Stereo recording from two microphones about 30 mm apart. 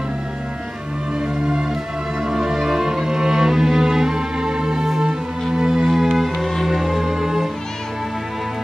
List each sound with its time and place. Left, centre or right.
1.4 s music: right
5.9 s music: centre
6.4 s music: centre